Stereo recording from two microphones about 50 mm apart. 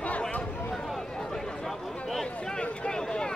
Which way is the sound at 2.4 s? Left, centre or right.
Left.